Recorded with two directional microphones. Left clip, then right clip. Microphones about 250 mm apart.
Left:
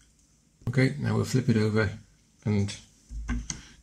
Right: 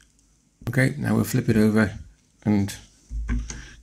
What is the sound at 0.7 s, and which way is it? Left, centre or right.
Speech, right.